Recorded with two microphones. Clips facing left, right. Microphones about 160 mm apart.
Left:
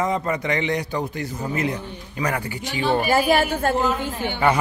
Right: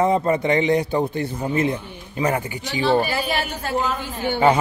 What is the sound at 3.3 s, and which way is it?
Speech, 50° left (ahead or behind).